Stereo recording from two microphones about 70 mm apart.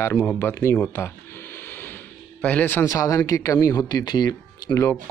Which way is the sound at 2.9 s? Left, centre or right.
Left.